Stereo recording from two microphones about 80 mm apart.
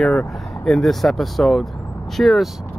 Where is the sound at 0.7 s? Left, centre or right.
Centre.